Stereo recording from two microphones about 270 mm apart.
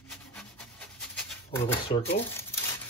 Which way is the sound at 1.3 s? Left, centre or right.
Centre.